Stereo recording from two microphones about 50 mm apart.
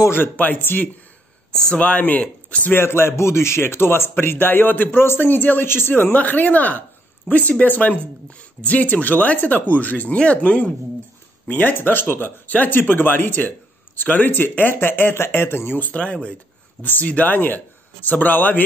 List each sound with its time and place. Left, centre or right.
0.1 s a man's voice: left
1.5 s speech: left
2.7 s a man's voice: left
6.1 s a man's voice: left
15.8 s speech: left